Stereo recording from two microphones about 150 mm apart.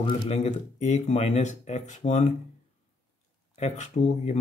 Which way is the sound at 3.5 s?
50° left (ahead or behind).